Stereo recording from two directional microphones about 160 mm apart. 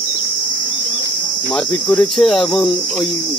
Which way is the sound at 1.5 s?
5° left (ahead or behind).